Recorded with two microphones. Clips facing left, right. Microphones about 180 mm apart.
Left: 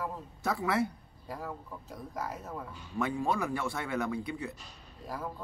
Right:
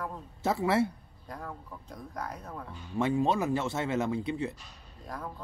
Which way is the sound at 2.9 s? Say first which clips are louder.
Right 4 dB; 25° right (ahead or behind).